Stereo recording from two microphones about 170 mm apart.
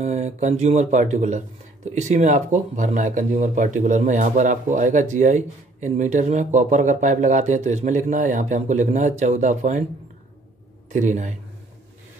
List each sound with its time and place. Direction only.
0.0 s speech: 40° right (ahead or behind)
10.9 s speech: 45° right (ahead or behind)